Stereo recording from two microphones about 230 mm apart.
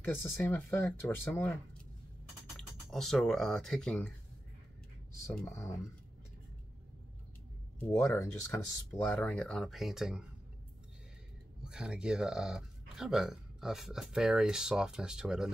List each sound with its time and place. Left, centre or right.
0.0 s speech: centre
5.4 s speech: centre
7.8 s speech: centre
11.6 s speech: centre